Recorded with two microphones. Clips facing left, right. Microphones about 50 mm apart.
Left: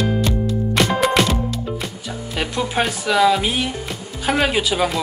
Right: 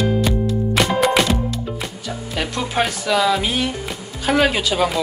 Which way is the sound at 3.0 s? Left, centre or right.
Centre.